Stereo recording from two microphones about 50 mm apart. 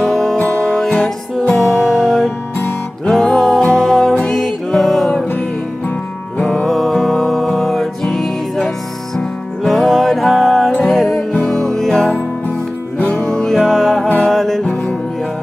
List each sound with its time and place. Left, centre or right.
0.0 s music: centre
6.4 s music: centre
13.6 s music: centre
14.6 s music: centre